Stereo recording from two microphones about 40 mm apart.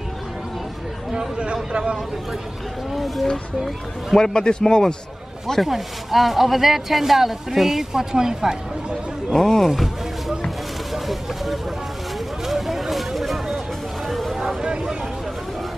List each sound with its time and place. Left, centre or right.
1.1 s speech: right
4.1 s a man's voice: centre
5.5 s speech: centre
9.3 s speech: centre
11.1 s a sound: centre
14.0 s vehicle: centre
14.3 s vehicle: centre